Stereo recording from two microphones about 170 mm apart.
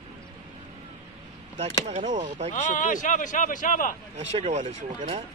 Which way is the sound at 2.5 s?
50° left (ahead or behind).